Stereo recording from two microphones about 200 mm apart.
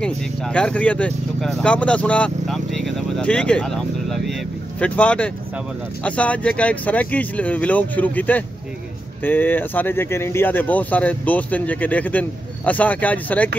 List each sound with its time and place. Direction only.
0.0 s speech: 5° left (ahead or behind)